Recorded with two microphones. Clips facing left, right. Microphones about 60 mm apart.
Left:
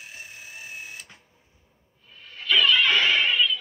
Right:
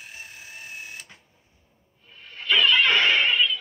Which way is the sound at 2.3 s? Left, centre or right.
Right.